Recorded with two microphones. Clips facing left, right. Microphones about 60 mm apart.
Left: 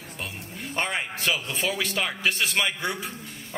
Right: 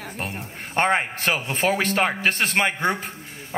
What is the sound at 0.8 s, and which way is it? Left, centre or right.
Speech, right.